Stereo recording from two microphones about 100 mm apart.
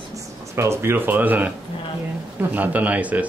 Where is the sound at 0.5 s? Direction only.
25° right (ahead or behind).